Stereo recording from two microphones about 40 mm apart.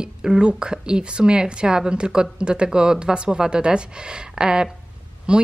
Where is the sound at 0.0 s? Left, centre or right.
Centre.